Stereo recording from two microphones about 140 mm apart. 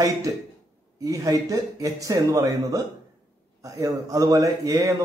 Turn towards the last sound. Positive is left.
turn(degrees=-25)  # may be behind; listen again after turning